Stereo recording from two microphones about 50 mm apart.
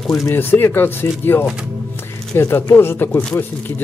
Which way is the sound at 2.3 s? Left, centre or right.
Left.